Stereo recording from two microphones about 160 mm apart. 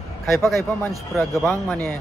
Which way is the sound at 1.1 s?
15° left (ahead or behind).